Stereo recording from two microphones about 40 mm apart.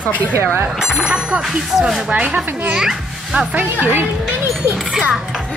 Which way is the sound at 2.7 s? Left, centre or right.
Centre.